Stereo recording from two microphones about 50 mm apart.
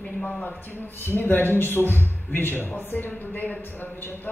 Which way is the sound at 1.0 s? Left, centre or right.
Left.